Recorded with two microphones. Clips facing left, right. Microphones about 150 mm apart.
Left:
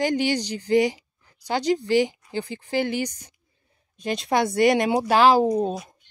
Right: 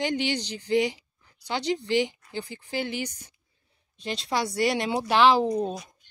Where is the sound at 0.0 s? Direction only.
45° left (ahead or behind).